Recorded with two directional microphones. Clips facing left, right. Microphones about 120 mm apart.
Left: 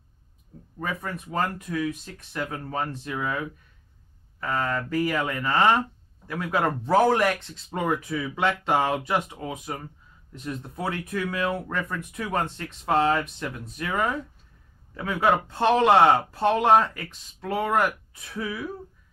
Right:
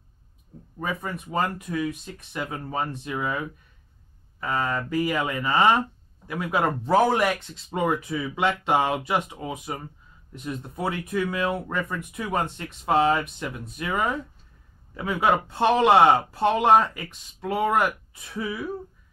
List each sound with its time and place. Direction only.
0.7 s speech: 15° right (ahead or behind)